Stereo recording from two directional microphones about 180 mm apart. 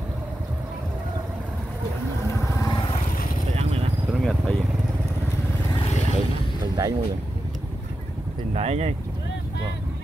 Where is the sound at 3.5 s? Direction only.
35° right (ahead or behind).